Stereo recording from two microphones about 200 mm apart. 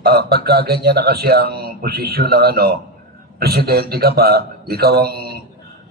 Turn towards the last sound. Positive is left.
turn(degrees=-50)  # may be behind; listen again after turning